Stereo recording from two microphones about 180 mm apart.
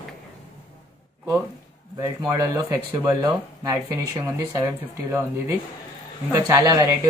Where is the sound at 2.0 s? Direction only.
20° right (ahead or behind).